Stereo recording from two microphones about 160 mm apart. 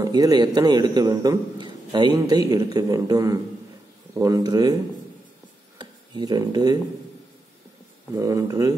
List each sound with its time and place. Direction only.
0.0 s a man's voice: 25° right (ahead or behind)
5.8 s speech: 25° right (ahead or behind)
8.1 s a man's voice: 20° right (ahead or behind)